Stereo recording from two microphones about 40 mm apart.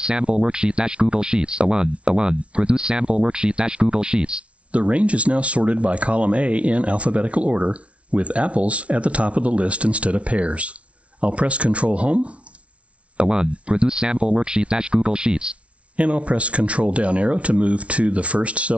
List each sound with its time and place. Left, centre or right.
0.0 s speech: right
13.2 s speech: right